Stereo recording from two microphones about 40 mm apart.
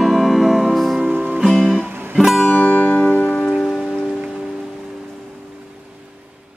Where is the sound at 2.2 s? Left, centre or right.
Centre.